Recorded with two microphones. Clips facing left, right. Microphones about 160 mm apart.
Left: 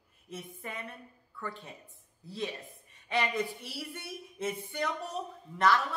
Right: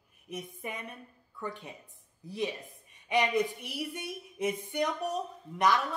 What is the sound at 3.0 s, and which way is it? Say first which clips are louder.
A man's voice: right 4 dB; 15° right (ahead or behind).